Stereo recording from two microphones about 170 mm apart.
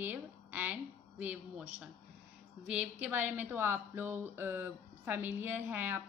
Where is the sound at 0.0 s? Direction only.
10° right (ahead or behind).